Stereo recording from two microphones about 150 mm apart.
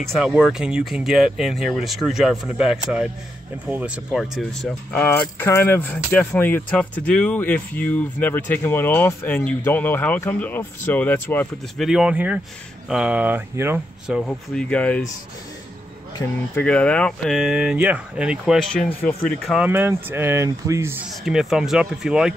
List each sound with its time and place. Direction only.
0.0 s speech: centre (ahead or behind)
4.9 s speech: 10° left (ahead or behind)
11.8 s speech: 5° right (ahead or behind)
14.0 s speech: centre (ahead or behind)
16.5 s speech: 10° left (ahead or behind)
19.6 s speech: 15° right (ahead or behind)
21.2 s speech: 5° right (ahead or behind)